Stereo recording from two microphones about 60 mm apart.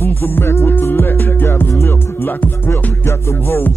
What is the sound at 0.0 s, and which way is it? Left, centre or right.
Music, left.